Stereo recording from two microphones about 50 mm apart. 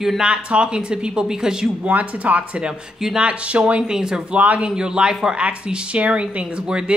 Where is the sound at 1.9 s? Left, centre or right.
Right; by 4.4 s centre.